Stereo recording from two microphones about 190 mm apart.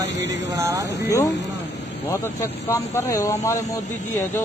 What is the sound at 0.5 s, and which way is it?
Speech, 15° right (ahead or behind).